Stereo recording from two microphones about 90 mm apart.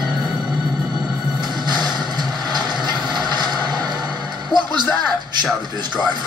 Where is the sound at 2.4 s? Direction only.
50° right (ahead or behind).